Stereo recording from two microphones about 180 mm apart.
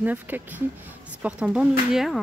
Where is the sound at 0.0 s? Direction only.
10° right (ahead or behind).